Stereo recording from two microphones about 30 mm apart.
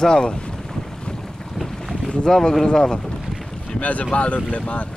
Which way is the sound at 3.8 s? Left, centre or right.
Left.